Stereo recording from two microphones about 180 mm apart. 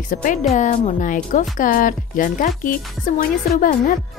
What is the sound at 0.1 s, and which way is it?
A woman's voice, 45° left (ahead or behind).